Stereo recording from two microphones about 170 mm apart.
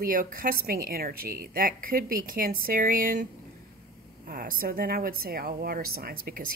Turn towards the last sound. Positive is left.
turn(degrees=-60)  # may be behind; listen again after turning